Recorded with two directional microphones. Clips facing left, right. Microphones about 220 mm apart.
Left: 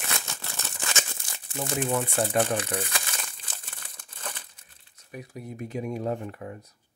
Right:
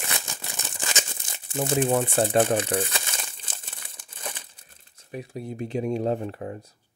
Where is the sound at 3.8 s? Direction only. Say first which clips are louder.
Right 2 dB; 10° right (ahead or behind).